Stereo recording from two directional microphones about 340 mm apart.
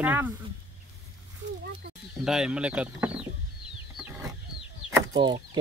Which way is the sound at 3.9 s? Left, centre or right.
Centre.